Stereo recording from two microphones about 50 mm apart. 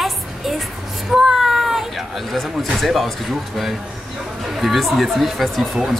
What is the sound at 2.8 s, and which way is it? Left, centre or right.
Speech, centre.